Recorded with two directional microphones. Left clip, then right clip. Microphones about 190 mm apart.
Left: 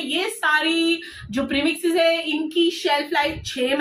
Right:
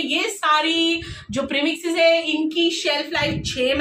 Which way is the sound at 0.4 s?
20° right (ahead or behind).